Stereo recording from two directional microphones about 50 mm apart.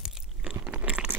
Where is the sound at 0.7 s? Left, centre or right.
Right.